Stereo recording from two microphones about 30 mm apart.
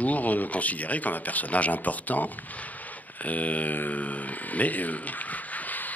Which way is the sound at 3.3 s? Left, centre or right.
Left.